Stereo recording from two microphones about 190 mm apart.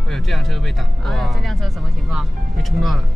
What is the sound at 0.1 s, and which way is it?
Speech, centre (ahead or behind).